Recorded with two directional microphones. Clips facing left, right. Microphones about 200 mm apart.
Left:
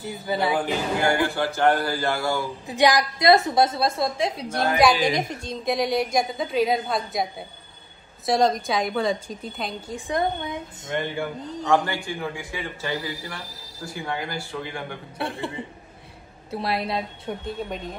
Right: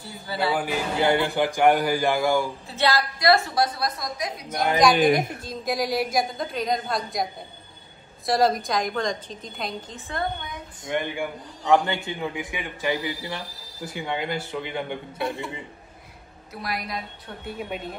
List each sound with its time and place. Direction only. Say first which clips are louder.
0.0 s a woman's voice: left 3 dB; 20° left (ahead or behind)
1.0 s speech: right 3 dB; 20° right (ahead or behind)
2.6 s a woman's voice: left 4 dB; 15° left (ahead or behind)
4.9 s a woman's voice: right 4 dB; 55° right (ahead or behind)
5.3 s a woman's voice: left 2 dB; centre (ahead or behind)
8.3 s a woman's voice: left 1 dB; 5° right (ahead or behind)
9.9 s a woman's voice: left 7 dB; 15° left (ahead or behind)
10.9 s a man's voice: even; 15° right (ahead or behind)
15.1 s a man's voice: left 1 dB; 30° left (ahead or behind)
16.6 s a woman's voice: left 5 dB; 30° left (ahead or behind)
17.5 s speech: right 3 dB; 10° right (ahead or behind)